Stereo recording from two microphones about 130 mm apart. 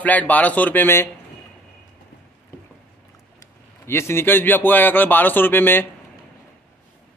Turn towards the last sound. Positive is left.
turn(degrees=15)  # may be behind; listen again after turning